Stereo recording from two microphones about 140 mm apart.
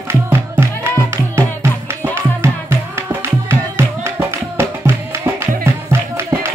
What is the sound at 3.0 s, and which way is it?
Music, 20° right (ahead or behind).